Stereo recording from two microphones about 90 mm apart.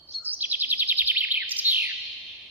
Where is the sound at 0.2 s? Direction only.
20° right (ahead or behind).